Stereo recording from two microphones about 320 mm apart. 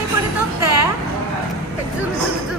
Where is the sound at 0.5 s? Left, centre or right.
Right.